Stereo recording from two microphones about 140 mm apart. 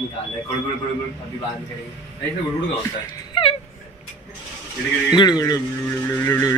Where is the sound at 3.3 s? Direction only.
35° left (ahead or behind).